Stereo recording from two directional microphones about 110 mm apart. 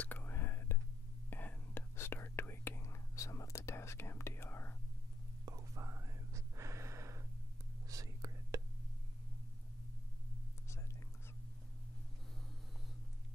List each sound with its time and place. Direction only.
0.0 s whispering: 15° left (ahead or behind)
5.4 s whispering: 30° right (ahead or behind)